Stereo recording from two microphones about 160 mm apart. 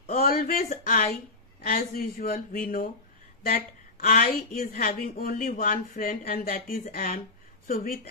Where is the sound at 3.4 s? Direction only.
65° left (ahead or behind).